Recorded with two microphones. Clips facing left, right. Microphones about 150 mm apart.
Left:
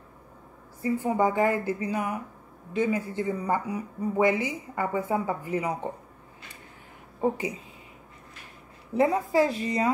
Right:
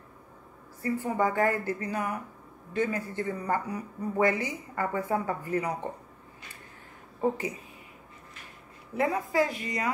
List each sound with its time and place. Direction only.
0.8 s speech: 15° left (ahead or behind)
7.2 s a woman's voice: 15° left (ahead or behind)
8.9 s a woman's voice: 25° left (ahead or behind)